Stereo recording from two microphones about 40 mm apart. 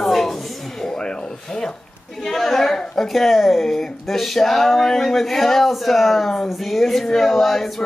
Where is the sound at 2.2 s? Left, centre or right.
Centre.